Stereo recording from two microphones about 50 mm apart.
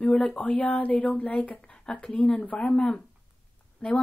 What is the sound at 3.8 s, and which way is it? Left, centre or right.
Speech, centre.